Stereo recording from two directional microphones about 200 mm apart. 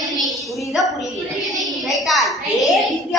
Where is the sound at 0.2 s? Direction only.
Centre (ahead or behind).